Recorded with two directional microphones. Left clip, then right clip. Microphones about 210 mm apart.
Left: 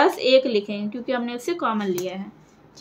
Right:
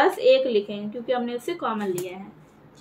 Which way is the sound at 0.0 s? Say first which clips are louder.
Left 1 dB; 45° left (ahead or behind).